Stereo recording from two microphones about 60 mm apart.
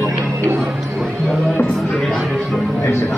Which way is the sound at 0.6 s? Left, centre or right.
Centre.